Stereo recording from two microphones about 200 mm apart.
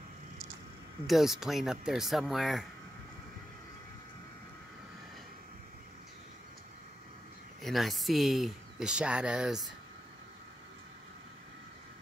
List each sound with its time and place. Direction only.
1.0 s speech: centre (ahead or behind)
7.6 s speech: centre (ahead or behind)